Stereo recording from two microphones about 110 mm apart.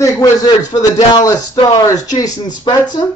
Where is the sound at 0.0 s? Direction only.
35° left (ahead or behind).